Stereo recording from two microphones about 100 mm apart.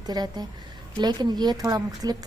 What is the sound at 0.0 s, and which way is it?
A woman's voice, 40° right (ahead or behind).